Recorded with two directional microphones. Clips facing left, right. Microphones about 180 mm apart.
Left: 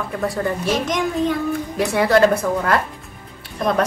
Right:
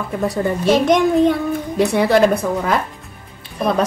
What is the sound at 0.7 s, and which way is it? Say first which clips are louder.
Speech: right 10 dB; 65° right (ahead or behind).